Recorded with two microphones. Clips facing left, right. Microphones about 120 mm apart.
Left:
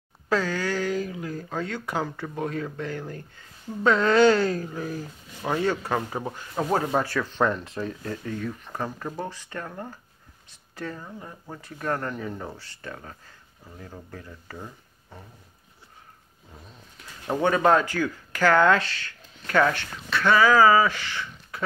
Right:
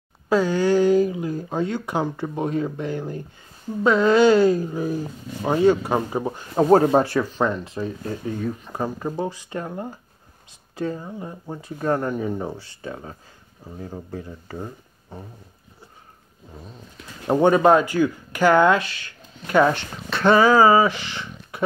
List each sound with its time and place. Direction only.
0.3 s speech: 20° right (ahead or behind); by 7.0 s 35° right (ahead or behind)
7.0 s speech: 20° right (ahead or behind)
7.3 s speech: centre (ahead or behind)
8.0 s speech: 15° right (ahead or behind)
17.3 s speech: 25° right (ahead or behind)
17.6 s speech: 15° right (ahead or behind)